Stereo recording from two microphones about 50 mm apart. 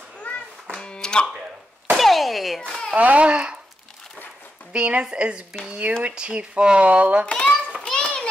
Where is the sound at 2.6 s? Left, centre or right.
Centre.